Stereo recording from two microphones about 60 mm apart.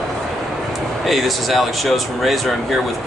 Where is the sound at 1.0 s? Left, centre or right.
Centre.